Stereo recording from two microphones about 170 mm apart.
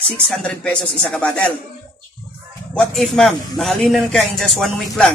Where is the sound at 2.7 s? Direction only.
5° left (ahead or behind).